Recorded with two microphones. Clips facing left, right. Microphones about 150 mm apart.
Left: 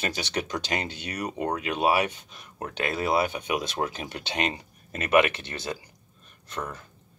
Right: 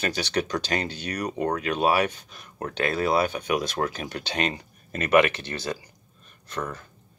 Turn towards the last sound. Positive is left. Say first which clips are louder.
# right 3 dB
turn(degrees=25)  # may be behind; listen again after turning